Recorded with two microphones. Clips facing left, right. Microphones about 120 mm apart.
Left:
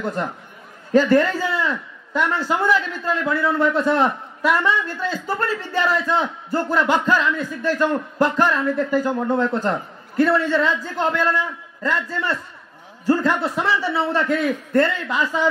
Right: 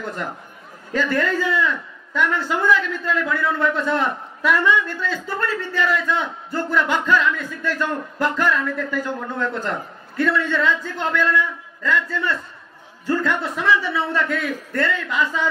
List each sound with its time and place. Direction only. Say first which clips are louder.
0.0 s a man's voice: left 4 dB; 35° left (ahead or behind)